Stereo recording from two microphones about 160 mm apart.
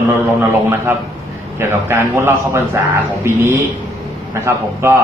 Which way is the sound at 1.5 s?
15° right (ahead or behind).